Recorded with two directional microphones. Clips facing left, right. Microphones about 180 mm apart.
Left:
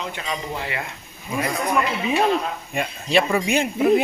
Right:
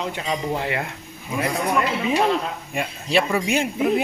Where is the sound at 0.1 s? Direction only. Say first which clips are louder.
Right 4 dB; 30° right (ahead or behind).